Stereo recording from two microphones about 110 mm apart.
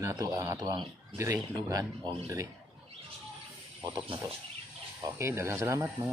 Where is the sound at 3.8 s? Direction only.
45° right (ahead or behind).